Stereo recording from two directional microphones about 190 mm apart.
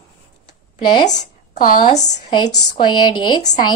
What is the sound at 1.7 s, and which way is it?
Speech, 25° left (ahead or behind).